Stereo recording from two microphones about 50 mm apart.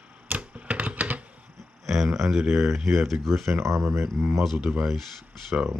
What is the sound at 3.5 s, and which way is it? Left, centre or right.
Speech, right.